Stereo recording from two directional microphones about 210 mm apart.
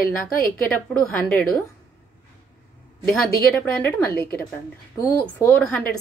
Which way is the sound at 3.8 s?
10° left (ahead or behind).